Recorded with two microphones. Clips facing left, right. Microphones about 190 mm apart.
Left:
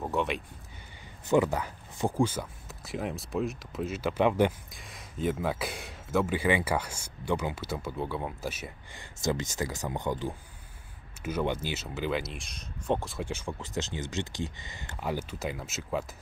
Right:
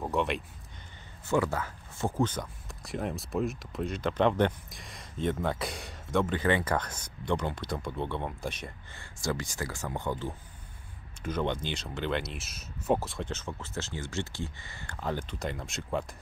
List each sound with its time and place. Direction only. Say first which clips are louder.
0.0 s a sound: even; centre (ahead or behind)
1.2 s speech: left 3 dB; 20° left (ahead or behind)
8.9 s speech: left 3 dB; 20° left (ahead or behind); by 13.2 s 5° right (ahead or behind)
13.2 s speech: left 2 dB; 10° left (ahead or behind)